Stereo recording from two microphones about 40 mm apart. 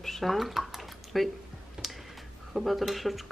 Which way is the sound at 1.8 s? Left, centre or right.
Centre.